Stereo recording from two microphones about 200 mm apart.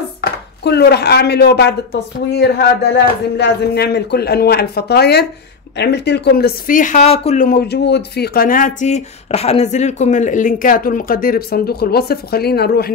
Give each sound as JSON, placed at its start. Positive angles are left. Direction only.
{"t": 0.2, "sound": "speech", "side_deg": 55}
{"t": 7.4, "sound": "speech", "side_deg": 55}